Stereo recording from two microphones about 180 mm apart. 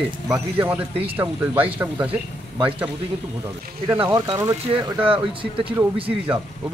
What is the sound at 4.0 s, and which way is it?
Speech, 25° right (ahead or behind).